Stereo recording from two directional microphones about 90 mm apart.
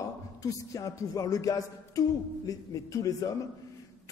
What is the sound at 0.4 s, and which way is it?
Speech, 40° left (ahead or behind).